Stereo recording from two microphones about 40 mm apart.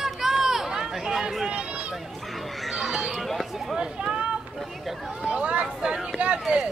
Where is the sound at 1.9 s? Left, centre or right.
Centre.